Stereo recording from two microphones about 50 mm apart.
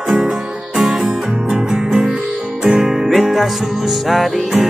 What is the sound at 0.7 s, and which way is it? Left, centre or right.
Music, centre.